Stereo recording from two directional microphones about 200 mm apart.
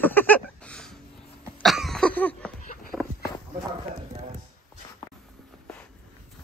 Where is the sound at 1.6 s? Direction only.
Centre (ahead or behind).